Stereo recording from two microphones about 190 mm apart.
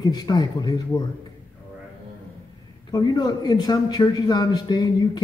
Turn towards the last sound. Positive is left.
turn(degrees=20)  # may be behind; listen again after turning